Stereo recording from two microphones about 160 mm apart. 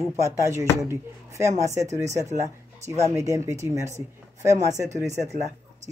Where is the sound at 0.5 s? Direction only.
20° right (ahead or behind).